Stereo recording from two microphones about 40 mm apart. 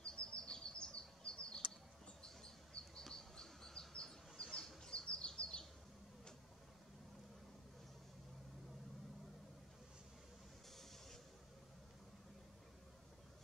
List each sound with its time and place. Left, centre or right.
0.0 s bird vocalization: left
2.2 s bird: left
3.0 s insect: centre
4.0 s a sound: centre
4.8 s bird: left